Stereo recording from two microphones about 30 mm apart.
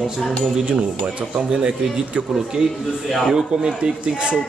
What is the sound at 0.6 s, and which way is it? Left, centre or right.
Speech, right.